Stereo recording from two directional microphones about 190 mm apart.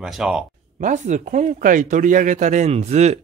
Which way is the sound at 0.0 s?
5° right (ahead or behind).